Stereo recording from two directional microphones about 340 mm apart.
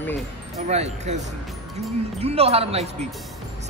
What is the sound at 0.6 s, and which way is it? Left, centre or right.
Speech, centre.